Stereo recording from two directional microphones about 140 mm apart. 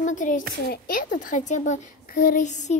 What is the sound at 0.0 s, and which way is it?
Speech, 65° left (ahead or behind).